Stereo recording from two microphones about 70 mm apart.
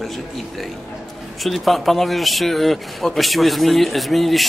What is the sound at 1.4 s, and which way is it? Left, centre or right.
Speech, centre.